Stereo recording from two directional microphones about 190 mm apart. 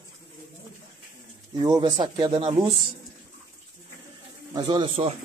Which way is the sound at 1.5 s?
20° right (ahead or behind).